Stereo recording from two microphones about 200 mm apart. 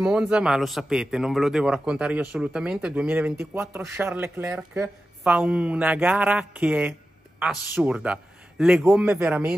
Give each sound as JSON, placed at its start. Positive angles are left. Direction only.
{"t": 0.0, "sound": "a man's voice", "side_deg": 0}